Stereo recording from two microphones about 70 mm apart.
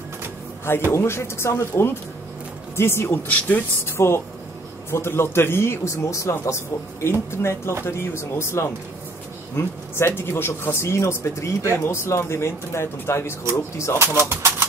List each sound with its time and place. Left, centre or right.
0.9 s speech: left
3.3 s speech: left
3.8 s speech: left
13.9 s speech: right